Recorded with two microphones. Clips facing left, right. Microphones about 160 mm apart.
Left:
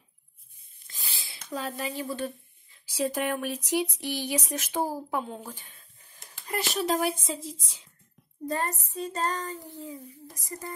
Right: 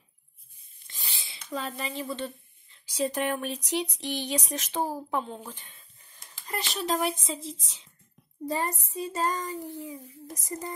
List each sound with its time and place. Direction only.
0.8 s wheeze: centre (ahead or behind)
1.8 s speech: 5° left (ahead or behind)
6.8 s a woman's voice: 5° left (ahead or behind)
8.5 s female singing: 10° right (ahead or behind)
9.7 s speech: 15° right (ahead or behind)